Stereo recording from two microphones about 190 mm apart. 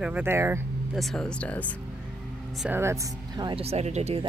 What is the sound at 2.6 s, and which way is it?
Speech, 10° right (ahead or behind).